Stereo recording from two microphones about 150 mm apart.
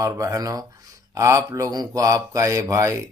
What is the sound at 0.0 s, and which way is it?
A man's voice, 20° right (ahead or behind).